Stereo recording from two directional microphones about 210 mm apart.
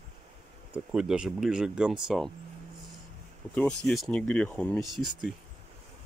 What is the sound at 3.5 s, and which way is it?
Speech, 5° left (ahead or behind).